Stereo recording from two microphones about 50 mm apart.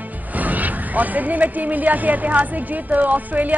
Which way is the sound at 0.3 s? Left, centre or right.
Right.